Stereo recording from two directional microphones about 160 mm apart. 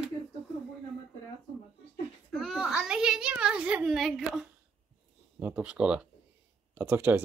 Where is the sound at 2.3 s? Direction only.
Centre (ahead or behind).